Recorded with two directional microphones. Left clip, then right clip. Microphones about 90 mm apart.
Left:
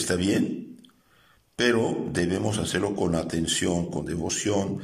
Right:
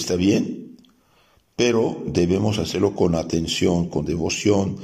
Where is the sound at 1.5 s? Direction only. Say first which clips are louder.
Right 4 dB; 25° right (ahead or behind).